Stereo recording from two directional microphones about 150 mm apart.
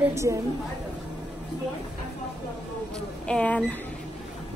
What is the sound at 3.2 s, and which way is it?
Speech, 10° left (ahead or behind).